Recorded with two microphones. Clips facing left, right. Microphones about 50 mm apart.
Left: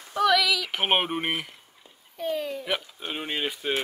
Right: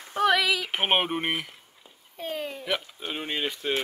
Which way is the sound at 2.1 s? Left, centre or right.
Right.